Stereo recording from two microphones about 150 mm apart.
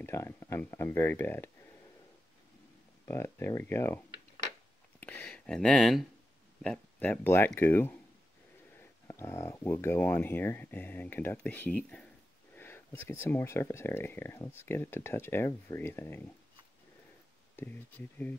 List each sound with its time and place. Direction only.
0.0 s speech: 20° left (ahead or behind)
3.1 s speech: 15° left (ahead or behind)
5.0 s speech: 10° left (ahead or behind)
9.0 s speech: 15° left (ahead or behind)
17.6 s speech: 15° left (ahead or behind)